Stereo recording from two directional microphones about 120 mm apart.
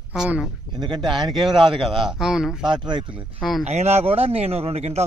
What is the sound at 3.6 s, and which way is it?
Speech, 65° right (ahead or behind).